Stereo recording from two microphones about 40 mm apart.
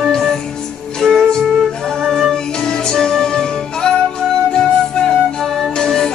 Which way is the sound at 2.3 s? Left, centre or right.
Centre.